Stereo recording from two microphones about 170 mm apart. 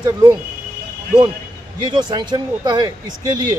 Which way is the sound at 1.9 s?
25° right (ahead or behind).